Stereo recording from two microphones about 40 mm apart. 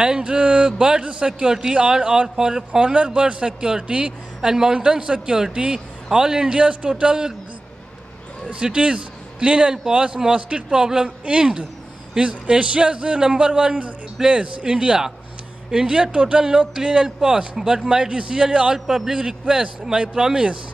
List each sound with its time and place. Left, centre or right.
0.0 s a man's voice: right
2.9 s a man's voice: right
4.4 s a man's voice: centre
6.1 s a man's voice: centre
6.6 s a man's voice: right
8.5 s a man's voice: right
19.1 s a man's voice: right